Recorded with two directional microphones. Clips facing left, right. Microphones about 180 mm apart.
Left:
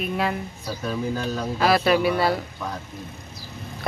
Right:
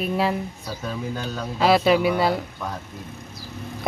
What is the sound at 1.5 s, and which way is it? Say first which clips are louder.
Speech: right 2 dB; 25° right (ahead or behind).